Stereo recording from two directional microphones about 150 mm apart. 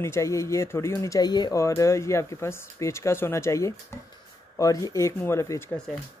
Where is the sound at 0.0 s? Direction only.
20° left (ahead or behind).